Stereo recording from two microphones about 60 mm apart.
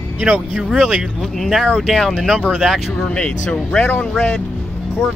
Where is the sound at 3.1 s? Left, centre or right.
Centre.